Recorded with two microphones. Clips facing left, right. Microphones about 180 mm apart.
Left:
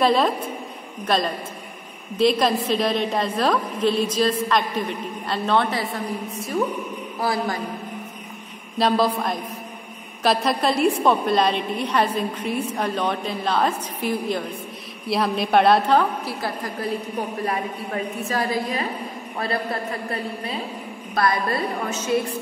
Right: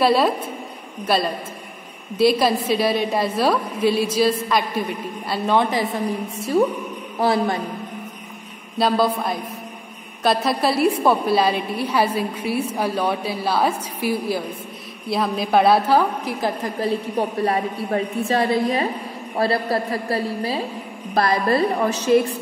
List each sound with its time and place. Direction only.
0.0 s a woman's voice: 5° right (ahead or behind)
6.3 s a woman's voice: 30° right (ahead or behind)
8.7 s a woman's voice: centre (ahead or behind)
17.2 s a woman's voice: 30° right (ahead or behind)